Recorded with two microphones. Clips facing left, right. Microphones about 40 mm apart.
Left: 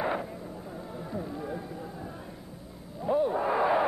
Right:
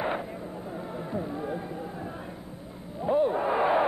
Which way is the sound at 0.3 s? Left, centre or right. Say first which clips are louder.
Right 3 dB; right.